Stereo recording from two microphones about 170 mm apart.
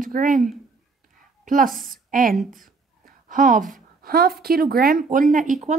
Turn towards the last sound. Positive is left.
turn(degrees=-50)  # may be behind; listen again after turning